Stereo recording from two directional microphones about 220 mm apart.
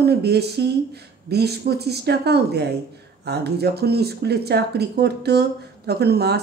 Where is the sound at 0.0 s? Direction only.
45° right (ahead or behind).